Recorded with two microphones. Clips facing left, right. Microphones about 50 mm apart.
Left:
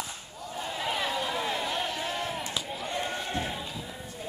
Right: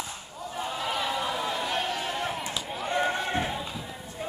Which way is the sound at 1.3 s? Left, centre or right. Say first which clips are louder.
Right 1 dB; centre.